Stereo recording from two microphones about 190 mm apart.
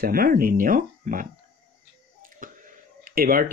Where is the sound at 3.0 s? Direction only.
50° right (ahead or behind).